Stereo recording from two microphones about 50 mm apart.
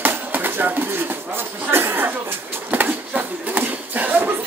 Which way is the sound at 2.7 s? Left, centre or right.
Right.